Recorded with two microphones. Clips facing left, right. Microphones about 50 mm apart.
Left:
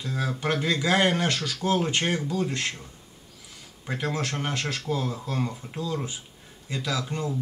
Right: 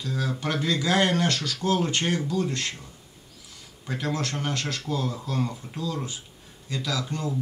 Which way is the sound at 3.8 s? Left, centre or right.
Centre.